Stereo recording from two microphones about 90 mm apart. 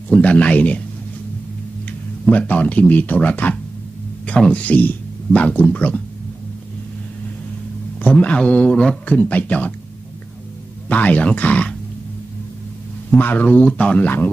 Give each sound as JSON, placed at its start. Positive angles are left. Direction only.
{"t": 0.1, "sound": "a man's voice", "side_deg": 15}
{"t": 2.3, "sound": "a man's voice", "side_deg": 15}
{"t": 8.0, "sound": "a man's voice", "side_deg": 15}
{"t": 10.9, "sound": "a man's voice", "side_deg": 15}
{"t": 13.1, "sound": "a man's voice", "side_deg": 20}